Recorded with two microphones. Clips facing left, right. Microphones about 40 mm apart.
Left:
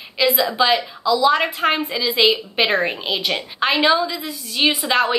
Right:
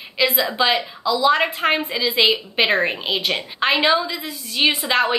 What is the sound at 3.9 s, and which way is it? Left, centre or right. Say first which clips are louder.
Speech: left 1 dB; centre.